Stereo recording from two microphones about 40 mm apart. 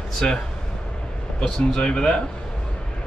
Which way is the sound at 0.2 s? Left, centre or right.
Left.